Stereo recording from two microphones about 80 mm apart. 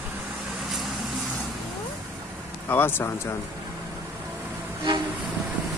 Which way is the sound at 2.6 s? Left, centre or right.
Left.